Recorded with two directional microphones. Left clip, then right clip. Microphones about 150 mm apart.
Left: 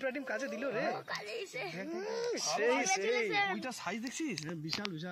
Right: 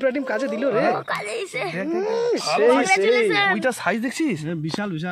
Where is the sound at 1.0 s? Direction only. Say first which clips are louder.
Right 14 dB; 20° left (ahead or behind).